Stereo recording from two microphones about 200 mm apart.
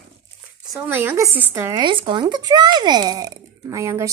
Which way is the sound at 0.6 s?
15° right (ahead or behind).